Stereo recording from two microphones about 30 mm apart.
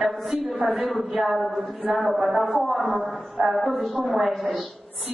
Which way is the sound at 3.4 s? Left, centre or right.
Right.